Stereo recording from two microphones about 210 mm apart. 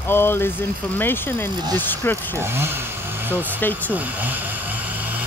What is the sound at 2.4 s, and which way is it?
Speech, 10° right (ahead or behind).